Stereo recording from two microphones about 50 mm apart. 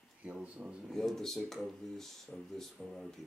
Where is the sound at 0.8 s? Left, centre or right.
Centre.